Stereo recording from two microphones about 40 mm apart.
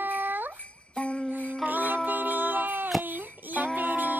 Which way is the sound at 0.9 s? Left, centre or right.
Left.